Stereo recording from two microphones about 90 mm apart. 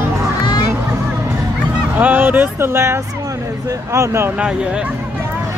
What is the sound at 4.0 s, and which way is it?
Speech, 30° right (ahead or behind).